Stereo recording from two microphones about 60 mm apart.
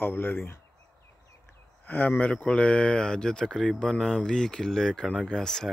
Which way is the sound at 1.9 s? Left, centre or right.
Left.